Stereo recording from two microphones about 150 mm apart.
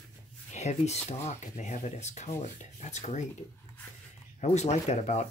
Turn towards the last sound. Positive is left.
turn(degrees=50)  # may be behind; listen again after turning